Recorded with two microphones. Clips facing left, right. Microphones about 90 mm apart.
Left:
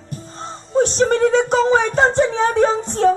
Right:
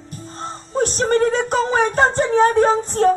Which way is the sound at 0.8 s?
45° right (ahead or behind).